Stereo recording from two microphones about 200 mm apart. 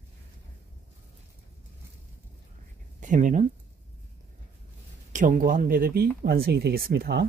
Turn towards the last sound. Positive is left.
turn(degrees=-55)  # may be behind; listen again after turning